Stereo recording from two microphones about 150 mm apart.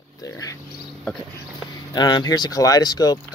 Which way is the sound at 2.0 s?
30° left (ahead or behind).